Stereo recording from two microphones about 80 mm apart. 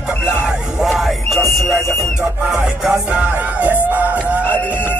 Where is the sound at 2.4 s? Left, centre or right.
Centre.